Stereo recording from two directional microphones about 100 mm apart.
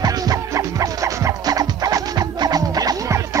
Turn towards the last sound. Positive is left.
turn(degrees=-40)  # may be behind; listen again after turning